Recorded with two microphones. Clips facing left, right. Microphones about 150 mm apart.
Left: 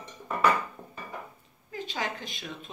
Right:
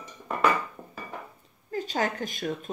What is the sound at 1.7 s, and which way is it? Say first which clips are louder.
Speech: right 6 dB; 45° right (ahead or behind).